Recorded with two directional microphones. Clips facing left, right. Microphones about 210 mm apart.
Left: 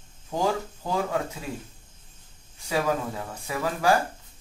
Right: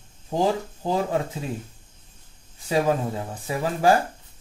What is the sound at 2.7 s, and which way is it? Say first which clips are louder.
Speech: right 4 dB; 25° right (ahead or behind).